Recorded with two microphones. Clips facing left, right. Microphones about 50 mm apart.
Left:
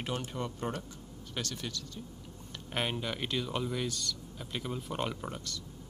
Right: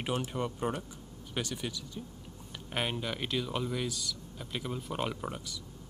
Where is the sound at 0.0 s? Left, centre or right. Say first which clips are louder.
Right 3 dB; right.